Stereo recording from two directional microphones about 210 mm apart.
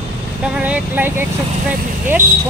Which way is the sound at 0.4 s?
5° right (ahead or behind).